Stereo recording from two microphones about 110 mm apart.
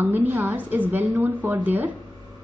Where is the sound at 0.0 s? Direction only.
15° right (ahead or behind).